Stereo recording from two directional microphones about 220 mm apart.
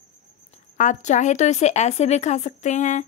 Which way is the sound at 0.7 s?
35° left (ahead or behind).